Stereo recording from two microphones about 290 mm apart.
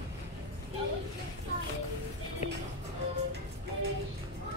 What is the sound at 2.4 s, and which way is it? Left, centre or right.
Music, left.